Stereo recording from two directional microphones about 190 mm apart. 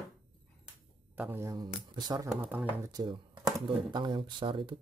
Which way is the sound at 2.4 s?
10° right (ahead or behind).